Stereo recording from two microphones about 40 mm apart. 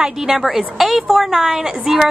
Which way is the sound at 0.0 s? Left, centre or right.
Centre.